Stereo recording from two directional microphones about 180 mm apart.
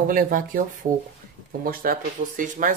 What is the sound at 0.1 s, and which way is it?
Speech, 50° right (ahead or behind).